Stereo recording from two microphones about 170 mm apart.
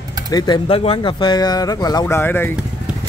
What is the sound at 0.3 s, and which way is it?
Speech, 25° left (ahead or behind).